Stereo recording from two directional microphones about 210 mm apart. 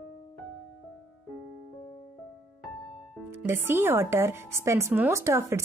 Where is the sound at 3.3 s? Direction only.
10° right (ahead or behind).